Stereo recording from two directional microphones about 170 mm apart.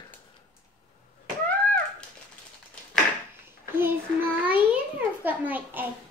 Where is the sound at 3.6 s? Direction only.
10° right (ahead or behind).